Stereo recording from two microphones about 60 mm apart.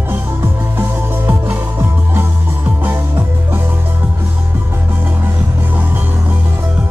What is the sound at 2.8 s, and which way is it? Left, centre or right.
Music, right.